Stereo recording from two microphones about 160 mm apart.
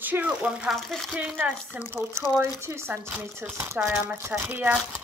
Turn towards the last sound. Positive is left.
turn(degrees=-10)  # may be behind; listen again after turning